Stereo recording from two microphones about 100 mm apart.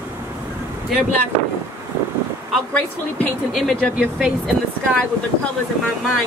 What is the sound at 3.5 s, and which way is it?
Speech, 5° left (ahead or behind).